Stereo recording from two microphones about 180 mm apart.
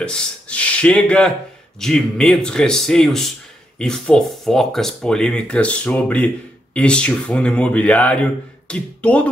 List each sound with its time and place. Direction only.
0.0 s speech: 5° left (ahead or behind)